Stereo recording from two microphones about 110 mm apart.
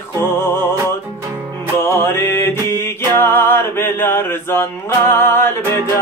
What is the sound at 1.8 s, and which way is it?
Music, 20° left (ahead or behind).